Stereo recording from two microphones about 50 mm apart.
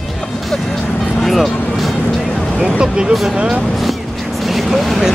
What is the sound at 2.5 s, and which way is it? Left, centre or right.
Speech, centre.